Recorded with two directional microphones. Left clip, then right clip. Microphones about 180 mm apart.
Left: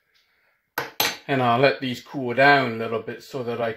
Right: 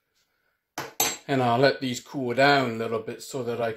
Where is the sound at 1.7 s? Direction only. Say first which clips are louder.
Left 2 dB; 10° right (ahead or behind).